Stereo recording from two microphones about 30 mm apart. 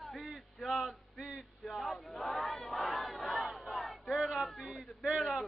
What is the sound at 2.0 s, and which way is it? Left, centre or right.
Crowd, left.